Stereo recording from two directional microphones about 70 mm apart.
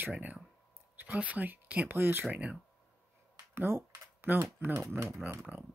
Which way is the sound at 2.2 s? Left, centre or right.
Centre.